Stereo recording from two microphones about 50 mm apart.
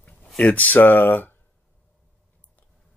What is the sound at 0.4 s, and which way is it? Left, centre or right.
Speech, left.